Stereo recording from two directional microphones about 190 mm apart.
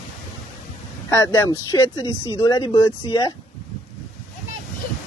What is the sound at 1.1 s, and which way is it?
Speech, 15° left (ahead or behind).